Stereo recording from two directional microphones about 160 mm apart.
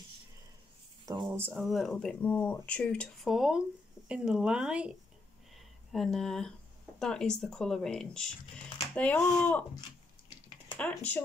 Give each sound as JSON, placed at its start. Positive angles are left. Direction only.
{"t": 1.0, "sound": "speech", "side_deg": -30}
{"t": 1.3, "sound": "speech", "side_deg": -15}
{"t": 1.6, "sound": "speech", "side_deg": 0}
{"t": 10.8, "sound": "speech", "side_deg": 10}